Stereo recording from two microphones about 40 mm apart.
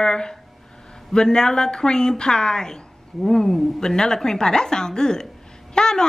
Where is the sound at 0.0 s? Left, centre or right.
Centre.